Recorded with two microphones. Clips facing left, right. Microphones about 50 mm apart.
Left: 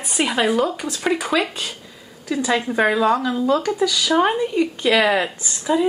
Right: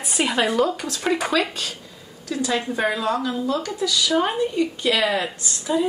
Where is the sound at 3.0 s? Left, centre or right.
Centre.